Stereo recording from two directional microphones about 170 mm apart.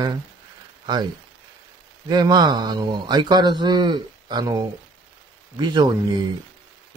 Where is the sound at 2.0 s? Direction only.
25° right (ahead or behind).